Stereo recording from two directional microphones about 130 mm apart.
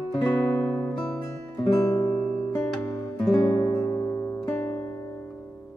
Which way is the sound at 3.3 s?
25° left (ahead or behind).